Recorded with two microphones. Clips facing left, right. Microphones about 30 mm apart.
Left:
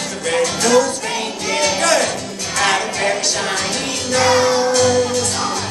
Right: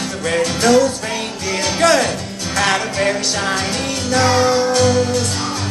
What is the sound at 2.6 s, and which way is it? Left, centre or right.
Music, centre.